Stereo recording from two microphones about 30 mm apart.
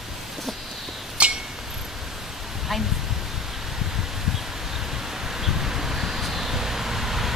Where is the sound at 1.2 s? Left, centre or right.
Right.